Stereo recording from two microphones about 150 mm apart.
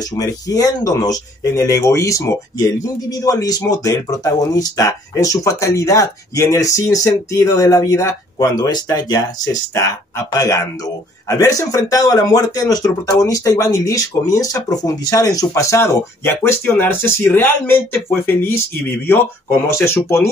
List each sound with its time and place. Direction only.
0.1 s speech: 25° left (ahead or behind)